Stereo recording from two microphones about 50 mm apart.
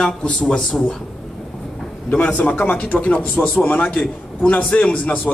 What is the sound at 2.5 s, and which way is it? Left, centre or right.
A man's voice, left.